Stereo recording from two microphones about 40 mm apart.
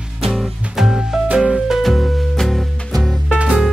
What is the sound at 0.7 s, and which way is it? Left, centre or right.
Music, centre.